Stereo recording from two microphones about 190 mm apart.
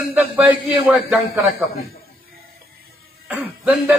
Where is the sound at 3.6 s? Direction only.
10° right (ahead or behind).